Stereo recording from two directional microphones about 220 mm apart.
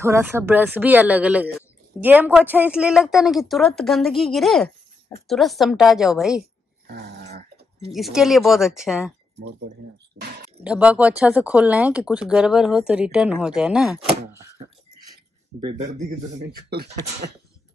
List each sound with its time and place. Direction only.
0.0 s speech: 10° right (ahead or behind)
6.9 s dog: 50° right (ahead or behind)
7.9 s speech: centre (ahead or behind)
10.2 s speech: 35° right (ahead or behind)
10.6 s speech: 5° right (ahead or behind)